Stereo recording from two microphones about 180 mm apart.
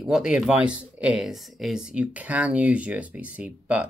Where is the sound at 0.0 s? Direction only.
5° right (ahead or behind).